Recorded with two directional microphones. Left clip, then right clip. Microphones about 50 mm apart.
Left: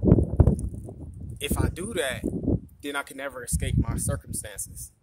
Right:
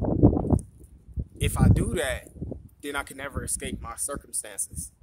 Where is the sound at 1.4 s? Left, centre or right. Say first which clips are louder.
Right 3 dB; right.